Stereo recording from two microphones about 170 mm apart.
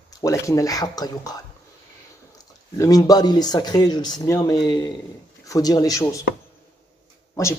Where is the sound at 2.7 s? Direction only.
20° left (ahead or behind).